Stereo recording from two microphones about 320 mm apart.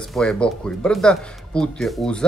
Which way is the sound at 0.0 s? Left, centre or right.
Centre.